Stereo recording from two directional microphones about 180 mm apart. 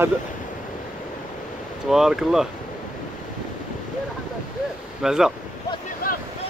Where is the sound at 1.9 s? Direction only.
Centre (ahead or behind).